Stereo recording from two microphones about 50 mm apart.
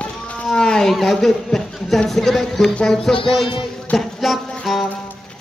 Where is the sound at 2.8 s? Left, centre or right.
Centre.